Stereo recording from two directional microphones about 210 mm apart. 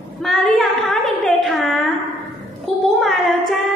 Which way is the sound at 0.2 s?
Centre (ahead or behind).